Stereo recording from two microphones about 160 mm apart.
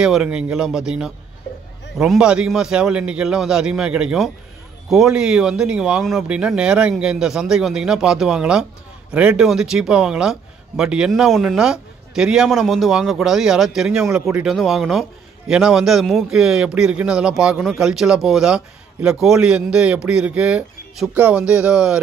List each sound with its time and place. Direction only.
0.0 s a man's voice: 5° right (ahead or behind)